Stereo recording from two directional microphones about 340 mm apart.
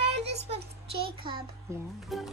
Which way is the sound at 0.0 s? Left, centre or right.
Centre.